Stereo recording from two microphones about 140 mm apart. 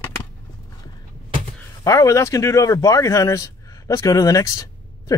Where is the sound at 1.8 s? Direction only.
25° left (ahead or behind).